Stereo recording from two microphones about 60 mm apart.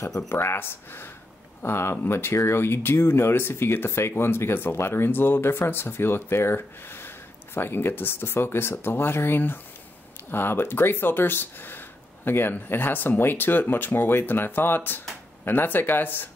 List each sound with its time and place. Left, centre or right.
0.3 s speech: left